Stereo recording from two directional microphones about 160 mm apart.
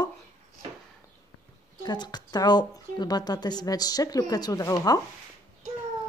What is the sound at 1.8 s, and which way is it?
A woman's voice, 25° left (ahead or behind).